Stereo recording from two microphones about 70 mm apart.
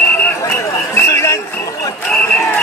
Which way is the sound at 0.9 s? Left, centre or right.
Left.